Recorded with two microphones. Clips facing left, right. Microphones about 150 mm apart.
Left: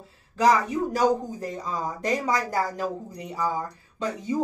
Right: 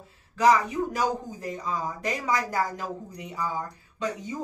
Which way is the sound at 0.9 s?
35° left (ahead or behind).